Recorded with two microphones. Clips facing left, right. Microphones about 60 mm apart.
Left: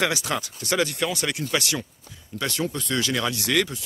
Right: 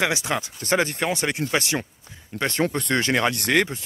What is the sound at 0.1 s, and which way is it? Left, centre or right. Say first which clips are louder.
Speech: right 2 dB; right.